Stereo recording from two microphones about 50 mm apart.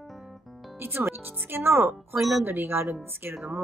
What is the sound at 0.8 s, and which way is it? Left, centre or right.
A woman's voice, right.